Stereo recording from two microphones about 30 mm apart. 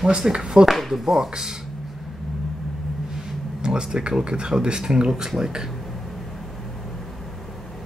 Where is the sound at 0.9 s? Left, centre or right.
Centre.